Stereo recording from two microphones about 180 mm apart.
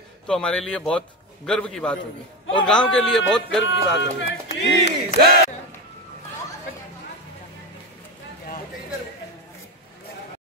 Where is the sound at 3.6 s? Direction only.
90° left.